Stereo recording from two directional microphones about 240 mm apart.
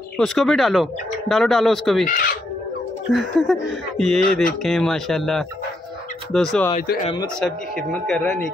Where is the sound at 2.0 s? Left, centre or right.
Left.